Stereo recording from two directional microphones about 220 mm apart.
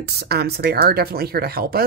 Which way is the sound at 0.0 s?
45° right (ahead or behind).